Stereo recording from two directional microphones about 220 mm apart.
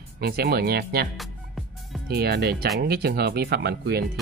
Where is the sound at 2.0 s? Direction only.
45° right (ahead or behind).